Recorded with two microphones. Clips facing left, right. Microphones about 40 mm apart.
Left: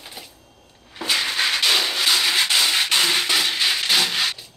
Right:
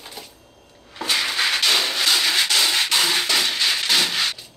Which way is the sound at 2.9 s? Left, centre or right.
Centre.